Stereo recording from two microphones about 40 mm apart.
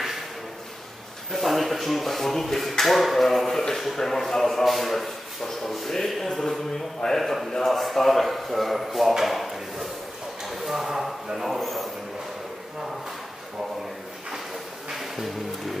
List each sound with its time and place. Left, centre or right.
1.3 s speech: centre
10.4 s a sound: centre
14.9 s music: centre